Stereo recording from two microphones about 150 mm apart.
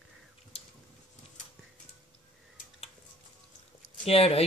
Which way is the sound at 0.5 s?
40° left (ahead or behind).